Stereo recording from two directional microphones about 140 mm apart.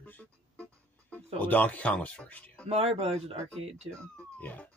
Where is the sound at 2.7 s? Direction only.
45° right (ahead or behind).